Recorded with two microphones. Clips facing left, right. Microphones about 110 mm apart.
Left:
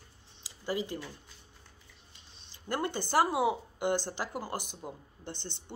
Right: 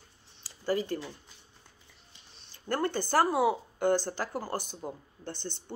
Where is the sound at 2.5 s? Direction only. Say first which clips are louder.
Right 3 dB; 15° left (ahead or behind).